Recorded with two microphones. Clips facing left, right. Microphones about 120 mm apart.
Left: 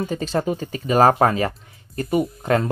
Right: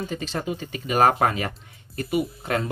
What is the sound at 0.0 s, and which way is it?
Speech, 40° left (ahead or behind).